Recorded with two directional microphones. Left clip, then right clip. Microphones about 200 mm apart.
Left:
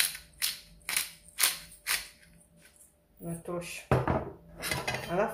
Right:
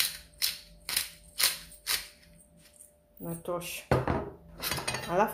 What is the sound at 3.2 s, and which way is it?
Speech, 45° right (ahead or behind).